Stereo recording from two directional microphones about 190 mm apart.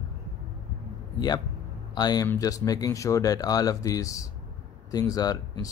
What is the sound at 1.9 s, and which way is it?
Speech, 20° left (ahead or behind).